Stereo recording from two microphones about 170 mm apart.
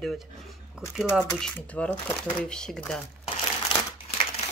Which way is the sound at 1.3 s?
5° left (ahead or behind).